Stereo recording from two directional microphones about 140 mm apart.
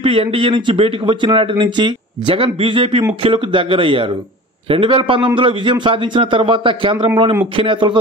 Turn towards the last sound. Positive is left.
turn(degrees=-35)  # may be behind; listen again after turning